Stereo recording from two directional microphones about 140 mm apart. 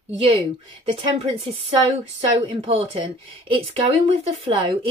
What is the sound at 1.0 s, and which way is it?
Speech, 40° right (ahead or behind).